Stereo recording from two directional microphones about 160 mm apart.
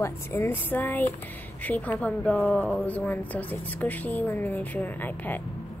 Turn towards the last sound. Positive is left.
turn(degrees=10)  # may be behind; listen again after turning